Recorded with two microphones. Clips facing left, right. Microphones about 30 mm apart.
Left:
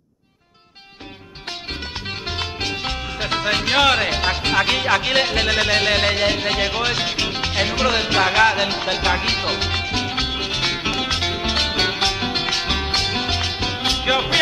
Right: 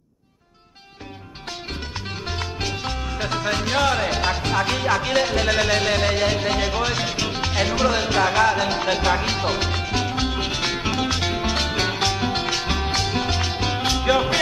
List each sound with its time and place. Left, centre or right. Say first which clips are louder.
1.7 s music: left 4 dB; left
3.3 s speech: left 4 dB; left
4.1 s music: left 2 dB; left
4.4 s music: left 3 dB; left
7.8 s music: left 2 dB; left
11.4 s music: left 3 dB; left